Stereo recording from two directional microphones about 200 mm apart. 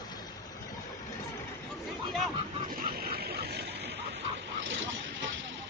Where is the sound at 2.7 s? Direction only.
50° right (ahead or behind).